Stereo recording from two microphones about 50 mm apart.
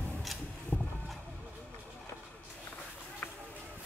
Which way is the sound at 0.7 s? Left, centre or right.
Left.